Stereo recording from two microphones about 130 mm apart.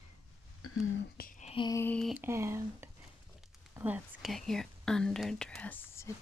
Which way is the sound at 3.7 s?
10° right (ahead or behind).